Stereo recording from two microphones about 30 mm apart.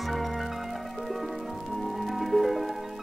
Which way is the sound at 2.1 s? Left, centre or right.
Centre.